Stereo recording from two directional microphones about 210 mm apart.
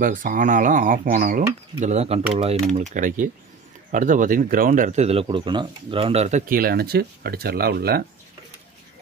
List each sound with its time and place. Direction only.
0.0 s speech: 40° right (ahead or behind)